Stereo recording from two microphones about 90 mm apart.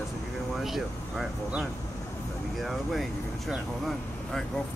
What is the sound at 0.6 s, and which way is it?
Speech, 5° right (ahead or behind).